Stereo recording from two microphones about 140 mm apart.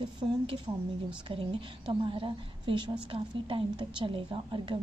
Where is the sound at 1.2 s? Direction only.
35° right (ahead or behind).